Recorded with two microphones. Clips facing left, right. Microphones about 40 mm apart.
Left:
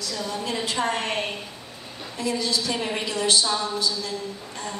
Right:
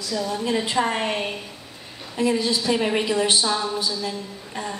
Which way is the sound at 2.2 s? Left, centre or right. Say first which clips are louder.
Right 4 dB; right.